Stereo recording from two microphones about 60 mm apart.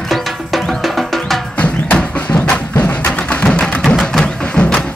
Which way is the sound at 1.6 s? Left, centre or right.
Left.